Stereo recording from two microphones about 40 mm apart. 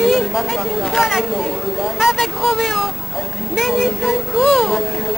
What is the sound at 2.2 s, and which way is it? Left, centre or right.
Speech, centre.